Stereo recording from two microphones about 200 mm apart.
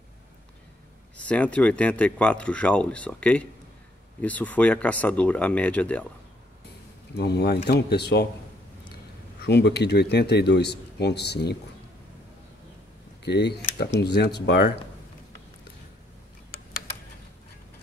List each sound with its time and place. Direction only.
1.1 s speech: 5° left (ahead or behind)
7.2 s speech: 55° left (ahead or behind)
9.4 s speech: 55° left (ahead or behind)
13.2 s speech: 55° left (ahead or behind)